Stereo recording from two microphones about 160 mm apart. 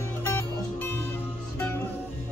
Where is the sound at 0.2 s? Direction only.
15° left (ahead or behind).